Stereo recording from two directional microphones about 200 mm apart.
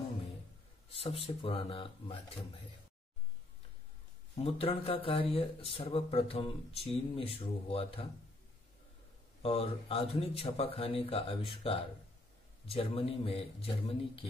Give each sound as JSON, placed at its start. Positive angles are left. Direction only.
{"t": 0.9, "sound": "speech", "side_deg": 30}
{"t": 4.4, "sound": "speech", "side_deg": 30}
{"t": 9.4, "sound": "speech", "side_deg": 30}